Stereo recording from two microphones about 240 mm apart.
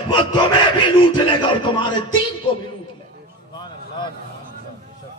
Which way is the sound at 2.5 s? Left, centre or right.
Left.